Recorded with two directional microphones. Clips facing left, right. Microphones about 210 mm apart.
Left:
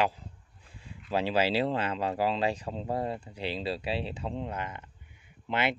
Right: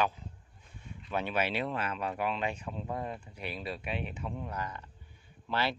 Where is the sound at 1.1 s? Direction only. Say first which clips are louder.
Left 5 dB; 30° left (ahead or behind).